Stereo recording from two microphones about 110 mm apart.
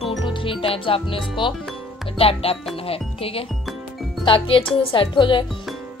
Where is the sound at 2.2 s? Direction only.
60° left (ahead or behind).